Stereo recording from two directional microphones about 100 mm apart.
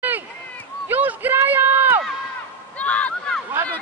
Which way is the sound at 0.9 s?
20° right (ahead or behind).